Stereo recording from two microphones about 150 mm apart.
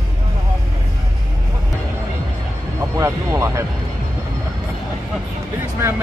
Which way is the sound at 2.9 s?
20° right (ahead or behind).